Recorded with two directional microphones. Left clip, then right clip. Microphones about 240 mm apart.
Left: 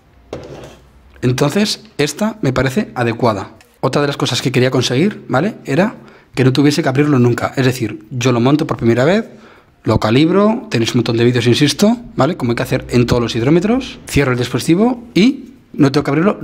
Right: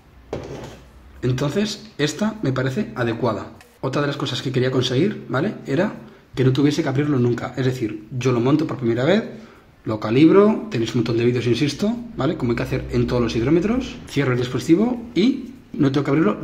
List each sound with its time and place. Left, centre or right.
1.2 s speech: left